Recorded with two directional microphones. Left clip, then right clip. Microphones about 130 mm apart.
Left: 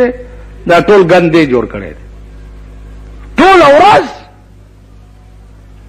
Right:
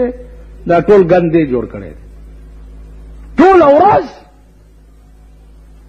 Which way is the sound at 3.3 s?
35° right (ahead or behind).